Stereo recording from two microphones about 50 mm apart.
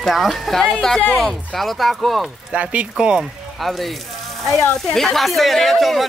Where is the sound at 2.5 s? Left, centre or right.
Right.